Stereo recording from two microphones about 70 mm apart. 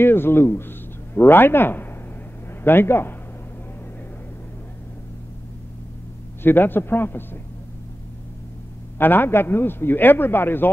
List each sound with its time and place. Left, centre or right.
0.0 s a man's voice: left
6.4 s a man's voice: left
8.9 s a man's voice: left